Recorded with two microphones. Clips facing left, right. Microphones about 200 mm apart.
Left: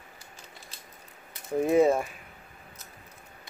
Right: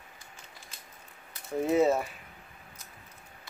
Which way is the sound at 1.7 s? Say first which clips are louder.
Left 3 dB; 15° left (ahead or behind).